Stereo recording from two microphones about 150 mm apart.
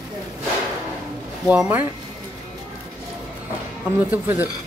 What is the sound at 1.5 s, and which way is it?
Speech, 10° right (ahead or behind).